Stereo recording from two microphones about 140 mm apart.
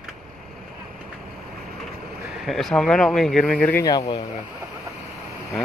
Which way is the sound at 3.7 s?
25° left (ahead or behind).